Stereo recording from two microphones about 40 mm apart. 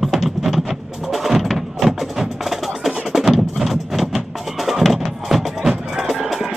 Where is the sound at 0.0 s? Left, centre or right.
Centre.